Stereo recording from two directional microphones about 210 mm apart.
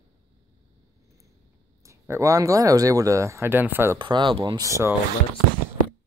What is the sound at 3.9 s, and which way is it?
Speech, 20° right (ahead or behind).